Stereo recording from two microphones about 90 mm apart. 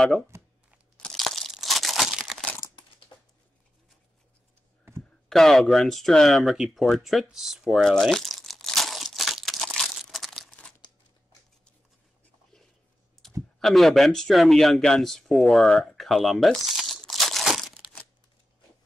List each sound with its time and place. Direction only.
0.3 s a sound: 30° right (ahead or behind)
0.9 s crunch: 5° left (ahead or behind)
5.3 s speech: 5° left (ahead or behind)
7.2 s crumpling: 5° right (ahead or behind)
13.6 s speech: centre (ahead or behind)